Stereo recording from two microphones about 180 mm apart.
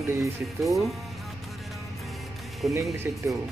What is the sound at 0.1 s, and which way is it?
Speech, 15° right (ahead or behind).